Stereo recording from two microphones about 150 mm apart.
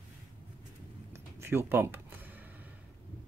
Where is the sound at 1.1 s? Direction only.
15° right (ahead or behind).